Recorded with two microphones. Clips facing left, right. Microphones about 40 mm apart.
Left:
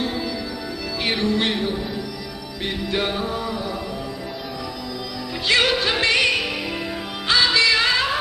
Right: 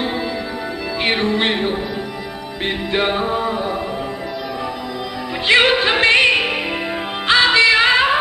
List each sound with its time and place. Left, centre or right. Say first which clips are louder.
1.0 s music: right 4 dB; right
2.9 s music: right 6 dB; right
5.5 s music: right 6 dB; right